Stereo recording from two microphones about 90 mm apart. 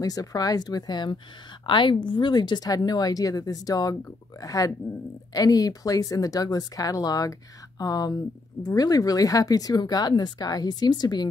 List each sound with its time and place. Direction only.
0.0 s speech: 45° left (ahead or behind)